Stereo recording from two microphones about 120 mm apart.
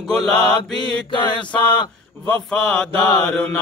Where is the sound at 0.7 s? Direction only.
40° left (ahead or behind).